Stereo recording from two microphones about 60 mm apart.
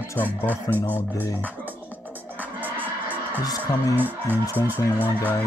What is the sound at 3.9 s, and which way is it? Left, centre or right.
Speech, right.